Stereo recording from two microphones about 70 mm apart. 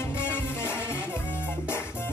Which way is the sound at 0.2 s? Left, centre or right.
Left.